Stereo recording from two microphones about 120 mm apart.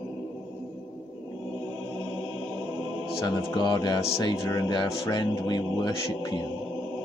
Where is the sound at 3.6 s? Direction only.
40° left (ahead or behind).